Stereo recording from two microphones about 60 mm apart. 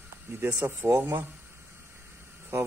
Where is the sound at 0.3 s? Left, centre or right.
Right.